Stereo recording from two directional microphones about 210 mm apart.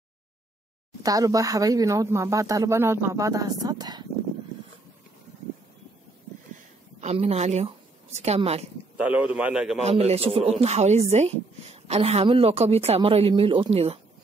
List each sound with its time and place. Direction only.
1.0 s speech: 15° right (ahead or behind)
7.0 s a woman's voice: 30° right (ahead or behind)
8.9 s a man's voice: 5° right (ahead or behind)
9.8 s speech: 30° right (ahead or behind)